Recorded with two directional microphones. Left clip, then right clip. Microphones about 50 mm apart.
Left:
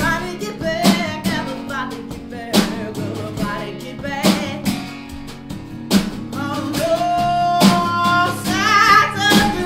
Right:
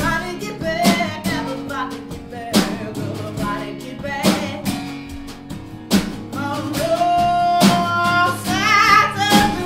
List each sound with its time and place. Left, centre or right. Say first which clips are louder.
0.0 s music: left 1 dB; centre
3.4 s music: even; centre
5.9 s music: left 1 dB; left